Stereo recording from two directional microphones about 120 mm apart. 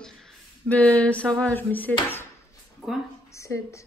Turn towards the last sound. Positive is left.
turn(degrees=25)  # may be behind; listen again after turning